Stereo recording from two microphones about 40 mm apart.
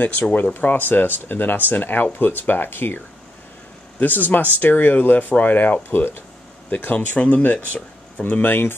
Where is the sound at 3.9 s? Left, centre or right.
Left.